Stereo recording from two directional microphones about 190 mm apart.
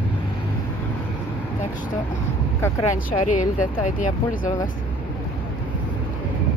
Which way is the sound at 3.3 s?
40° left (ahead or behind).